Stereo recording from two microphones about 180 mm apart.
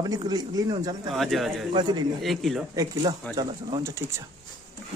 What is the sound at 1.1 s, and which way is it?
Speech, centre (ahead or behind).